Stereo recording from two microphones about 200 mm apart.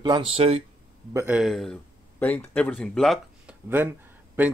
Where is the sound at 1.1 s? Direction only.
10° right (ahead or behind).